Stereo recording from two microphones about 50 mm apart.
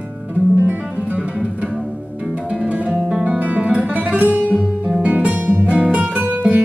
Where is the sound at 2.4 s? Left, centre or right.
Right.